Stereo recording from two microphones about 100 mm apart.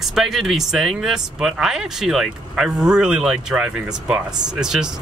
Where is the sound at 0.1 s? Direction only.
Centre (ahead or behind).